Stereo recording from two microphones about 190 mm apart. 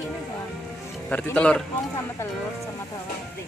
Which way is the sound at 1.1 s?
5° left (ahead or behind).